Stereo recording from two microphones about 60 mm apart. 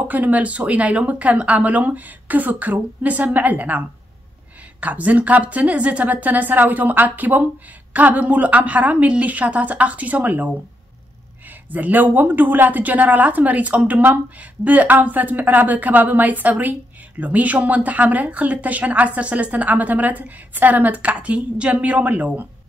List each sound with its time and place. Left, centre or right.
0.1 s speech: right
11.7 s speech: right